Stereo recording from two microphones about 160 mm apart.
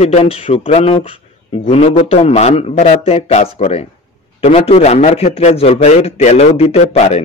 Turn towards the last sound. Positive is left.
turn(degrees=40)  # may be behind; listen again after turning